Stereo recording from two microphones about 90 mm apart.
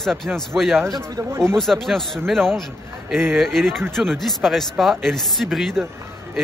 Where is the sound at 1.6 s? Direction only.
5° left (ahead or behind).